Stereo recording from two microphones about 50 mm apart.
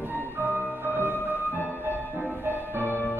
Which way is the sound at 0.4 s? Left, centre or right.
Right.